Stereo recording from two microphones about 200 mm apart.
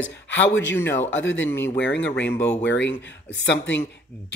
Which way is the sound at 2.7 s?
65° left (ahead or behind).